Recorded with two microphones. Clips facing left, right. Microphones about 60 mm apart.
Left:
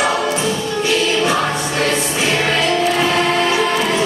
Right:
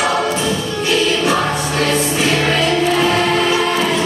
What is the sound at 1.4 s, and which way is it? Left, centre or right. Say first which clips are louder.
Music: right 1 dB; centre.